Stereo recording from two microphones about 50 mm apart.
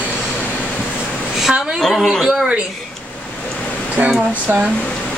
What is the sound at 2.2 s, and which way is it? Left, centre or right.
Speech, centre.